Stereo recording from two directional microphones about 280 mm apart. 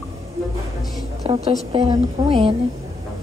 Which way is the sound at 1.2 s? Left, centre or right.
Right.